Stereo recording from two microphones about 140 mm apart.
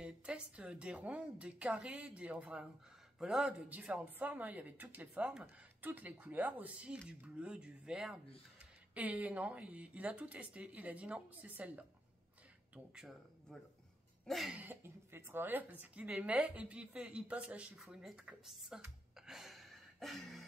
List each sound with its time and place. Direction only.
0.0 s speech: 5° right (ahead or behind)
14.2 s cough: centre (ahead or behind)
14.6 s speech: 15° right (ahead or behind)
19.2 s a sound: centre (ahead or behind)